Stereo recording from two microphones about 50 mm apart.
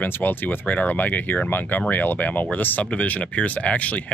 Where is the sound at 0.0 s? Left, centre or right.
Left.